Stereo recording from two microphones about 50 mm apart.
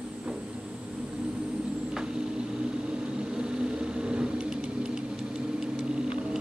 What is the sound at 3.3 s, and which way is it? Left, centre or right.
Vehicle, centre.